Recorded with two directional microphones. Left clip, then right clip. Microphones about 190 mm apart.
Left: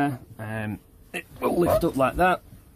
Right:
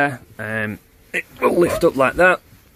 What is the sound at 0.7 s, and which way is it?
Speech, 5° right (ahead or behind).